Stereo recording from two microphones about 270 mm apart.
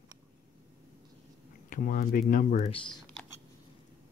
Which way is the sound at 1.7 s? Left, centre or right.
Left.